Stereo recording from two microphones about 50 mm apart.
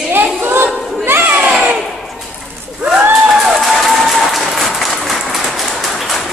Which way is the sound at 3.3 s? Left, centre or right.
Centre.